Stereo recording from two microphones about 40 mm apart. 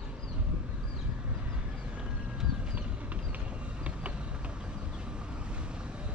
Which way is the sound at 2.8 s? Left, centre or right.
Right.